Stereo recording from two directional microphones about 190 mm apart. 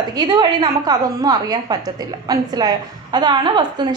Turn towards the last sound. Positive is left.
turn(degrees=-25)  # may be behind; listen again after turning